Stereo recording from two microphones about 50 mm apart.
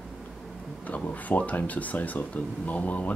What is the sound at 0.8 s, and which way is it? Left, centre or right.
Speech, left.